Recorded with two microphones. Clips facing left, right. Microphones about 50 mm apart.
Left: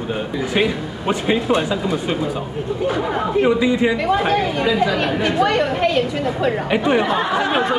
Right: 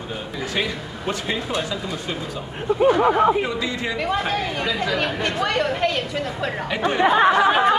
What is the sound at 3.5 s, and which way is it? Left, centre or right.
Speech, centre.